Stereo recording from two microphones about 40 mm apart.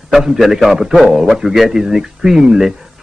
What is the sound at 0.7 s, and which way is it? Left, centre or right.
A man's voice, centre.